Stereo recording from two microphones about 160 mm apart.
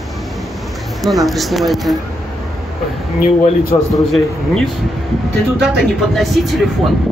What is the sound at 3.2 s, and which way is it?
Speech, 60° left (ahead or behind).